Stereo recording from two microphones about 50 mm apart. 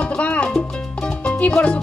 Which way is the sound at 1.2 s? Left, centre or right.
Left.